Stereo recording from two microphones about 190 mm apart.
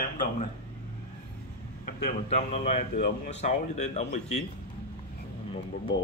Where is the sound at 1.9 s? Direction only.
35° left (ahead or behind).